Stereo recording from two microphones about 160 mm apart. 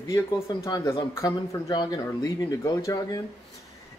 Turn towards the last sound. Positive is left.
turn(degrees=20)  # may be behind; listen again after turning